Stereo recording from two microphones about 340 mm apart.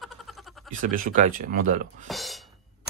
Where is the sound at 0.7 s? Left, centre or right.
Right.